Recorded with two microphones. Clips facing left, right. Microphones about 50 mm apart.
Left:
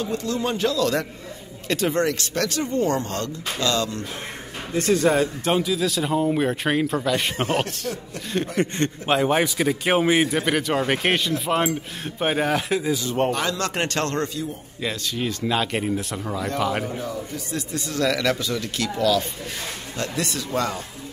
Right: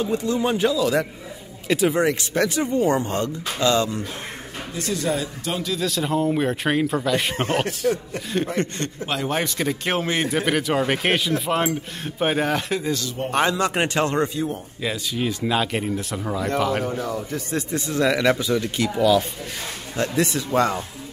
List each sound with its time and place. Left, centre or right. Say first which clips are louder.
0.0 s speech: right 3 dB; centre
4.7 s speech: left 6 dB; left
5.6 s speech: left 2 dB; centre
8.7 s a man's voice: left 5 dB; left
9.3 s a man's voice: left 3 dB; centre
10.3 s speech: right 1 dB; centre
13.3 s speech: right 4 dB; right
13.6 s speech: right 3 dB; centre
14.8 s speech: even; centre
17.1 s a man's voice: right 3 dB; right